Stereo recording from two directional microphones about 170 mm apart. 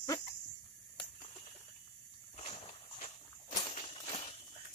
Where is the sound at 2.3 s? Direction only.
35° left (ahead or behind).